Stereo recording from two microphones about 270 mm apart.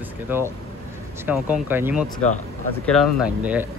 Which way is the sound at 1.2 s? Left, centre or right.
Centre.